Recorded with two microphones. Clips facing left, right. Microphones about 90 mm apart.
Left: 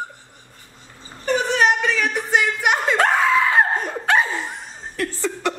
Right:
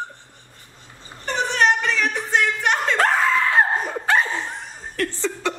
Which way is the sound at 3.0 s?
Centre (ahead or behind).